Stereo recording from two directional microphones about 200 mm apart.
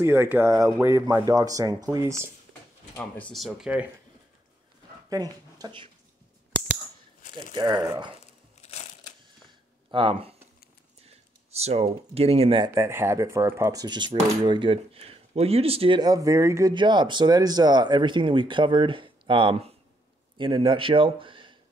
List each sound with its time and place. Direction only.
0.0 s speech: 10° right (ahead or behind)
3.0 s speech: 5° left (ahead or behind)
5.1 s speech: 20° right (ahead or behind)
7.5 s speech: 20° right (ahead or behind)
8.5 s crushing: 35° left (ahead or behind)
9.8 s speech: 25° right (ahead or behind)
11.5 s a man's voice: 30° right (ahead or behind)